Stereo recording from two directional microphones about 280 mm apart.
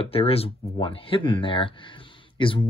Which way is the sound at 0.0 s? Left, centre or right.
Left.